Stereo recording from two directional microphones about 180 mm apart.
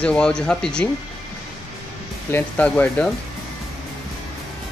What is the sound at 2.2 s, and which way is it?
Speech, 10° left (ahead or behind).